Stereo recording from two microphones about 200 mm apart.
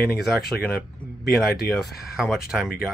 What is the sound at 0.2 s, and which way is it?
Speech, centre (ahead or behind).